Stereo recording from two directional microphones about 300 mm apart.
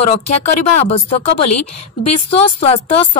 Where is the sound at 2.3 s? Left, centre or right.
Centre.